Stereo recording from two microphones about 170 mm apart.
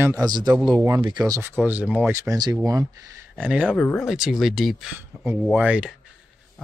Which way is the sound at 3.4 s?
10° right (ahead or behind).